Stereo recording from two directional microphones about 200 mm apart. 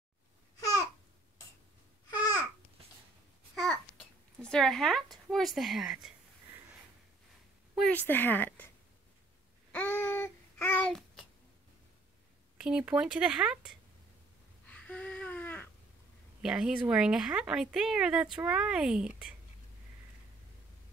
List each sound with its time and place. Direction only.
0.6 s babbling: 20° left (ahead or behind)
2.1 s babbling: 20° left (ahead or behind)
3.5 s babbling: 5° left (ahead or behind)
4.4 s speech: 5° left (ahead or behind)
7.7 s a woman's voice: 5° left (ahead or behind)
9.7 s a sound: 10° left (ahead or behind)
12.5 s speech: 5° right (ahead or behind)
14.7 s a sound: 5° left (ahead or behind)
16.4 s speech: 5° right (ahead or behind)